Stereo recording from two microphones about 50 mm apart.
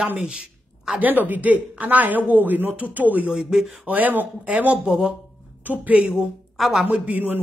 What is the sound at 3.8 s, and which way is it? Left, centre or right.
Speech, right.